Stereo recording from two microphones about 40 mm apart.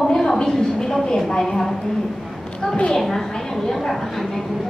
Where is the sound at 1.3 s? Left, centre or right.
Centre.